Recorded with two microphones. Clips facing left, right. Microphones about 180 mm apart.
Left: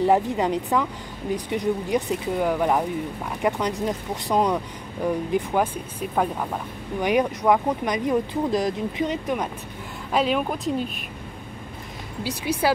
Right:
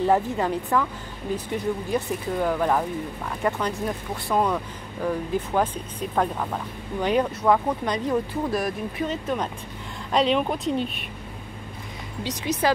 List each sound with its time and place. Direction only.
0.0 s speech: 15° left (ahead or behind)
12.2 s speech: 10° left (ahead or behind)